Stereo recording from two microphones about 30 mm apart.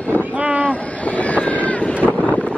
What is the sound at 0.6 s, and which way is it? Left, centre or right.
Vehicle, left.